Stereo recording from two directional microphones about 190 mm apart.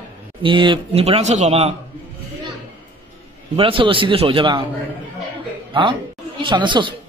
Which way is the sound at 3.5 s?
30° right (ahead or behind).